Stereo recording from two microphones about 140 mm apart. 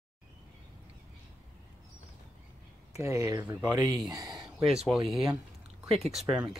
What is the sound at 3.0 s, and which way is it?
Speech, 20° right (ahead or behind).